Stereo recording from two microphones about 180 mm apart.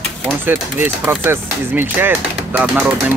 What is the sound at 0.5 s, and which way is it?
Speech, 10° right (ahead or behind).